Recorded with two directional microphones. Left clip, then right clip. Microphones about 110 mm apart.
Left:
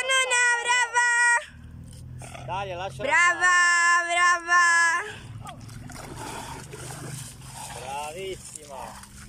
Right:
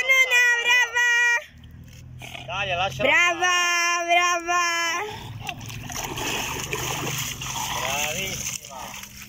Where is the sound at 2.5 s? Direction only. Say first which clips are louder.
Right 6 dB; 50° left (ahead or behind).